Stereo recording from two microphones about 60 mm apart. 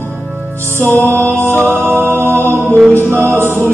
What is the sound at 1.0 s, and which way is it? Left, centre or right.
Music, right.